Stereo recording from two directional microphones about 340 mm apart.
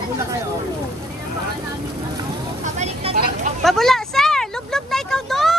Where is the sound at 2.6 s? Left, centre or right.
Centre.